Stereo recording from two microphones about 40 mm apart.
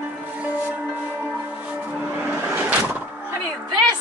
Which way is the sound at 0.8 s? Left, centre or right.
Right.